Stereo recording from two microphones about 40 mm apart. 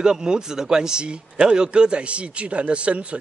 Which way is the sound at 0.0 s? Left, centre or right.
Centre.